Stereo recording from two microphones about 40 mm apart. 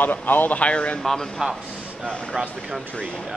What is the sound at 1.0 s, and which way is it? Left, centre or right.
Speech, centre.